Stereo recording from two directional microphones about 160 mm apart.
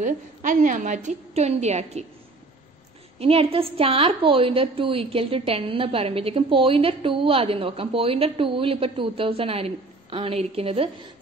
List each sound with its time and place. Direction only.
0.0 s a woman's voice: 55° right (ahead or behind)
3.2 s a woman's voice: 35° right (ahead or behind)